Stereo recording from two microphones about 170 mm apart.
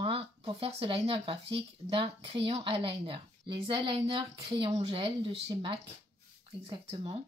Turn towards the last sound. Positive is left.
turn(degrees=-30)  # may be behind; listen again after turning